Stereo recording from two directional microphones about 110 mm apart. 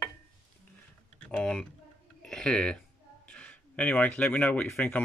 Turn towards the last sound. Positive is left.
turn(degrees=10)  # may be behind; listen again after turning